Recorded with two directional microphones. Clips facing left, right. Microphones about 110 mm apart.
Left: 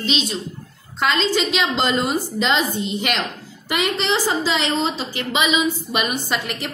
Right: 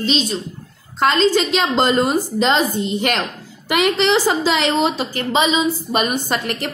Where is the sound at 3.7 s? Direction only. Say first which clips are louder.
Right 5 dB; 70° right (ahead or behind).